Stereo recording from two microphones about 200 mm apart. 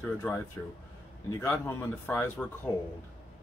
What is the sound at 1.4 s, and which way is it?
Speech, 10° left (ahead or behind).